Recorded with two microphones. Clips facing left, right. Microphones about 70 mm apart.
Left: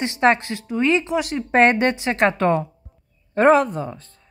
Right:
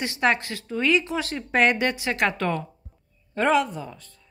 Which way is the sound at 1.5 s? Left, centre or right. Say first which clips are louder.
Left 5 dB; left.